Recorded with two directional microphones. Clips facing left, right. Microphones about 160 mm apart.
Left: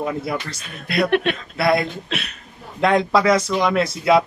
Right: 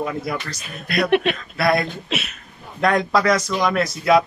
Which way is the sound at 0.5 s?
25° left (ahead or behind).